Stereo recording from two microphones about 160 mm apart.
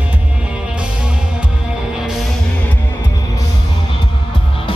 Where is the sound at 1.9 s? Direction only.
5° right (ahead or behind).